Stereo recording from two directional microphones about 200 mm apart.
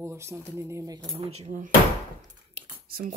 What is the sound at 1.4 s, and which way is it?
Speech, 40° right (ahead or behind).